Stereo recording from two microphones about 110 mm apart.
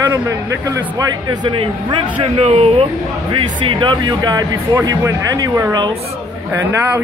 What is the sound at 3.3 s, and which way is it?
Speech, 50° right (ahead or behind).